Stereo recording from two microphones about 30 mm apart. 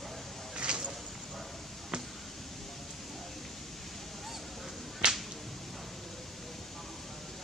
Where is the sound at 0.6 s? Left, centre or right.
Right.